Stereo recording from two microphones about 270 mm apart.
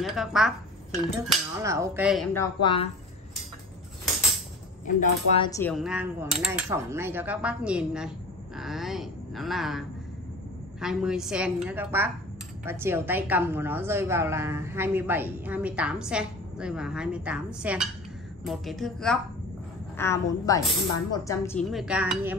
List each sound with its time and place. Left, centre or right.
0.0 s speech: centre
1.6 s a woman's voice: centre
2.3 s a woman's voice: centre
4.8 s speech: left
5.5 s a woman's voice: centre